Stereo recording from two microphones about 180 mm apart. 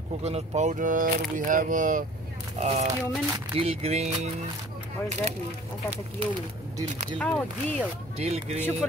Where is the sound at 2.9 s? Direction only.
20° right (ahead or behind).